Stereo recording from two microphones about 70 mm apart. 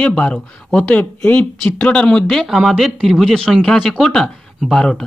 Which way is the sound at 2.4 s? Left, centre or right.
Centre.